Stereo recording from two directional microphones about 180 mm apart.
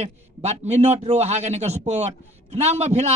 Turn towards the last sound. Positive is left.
turn(degrees=-35)  # may be behind; listen again after turning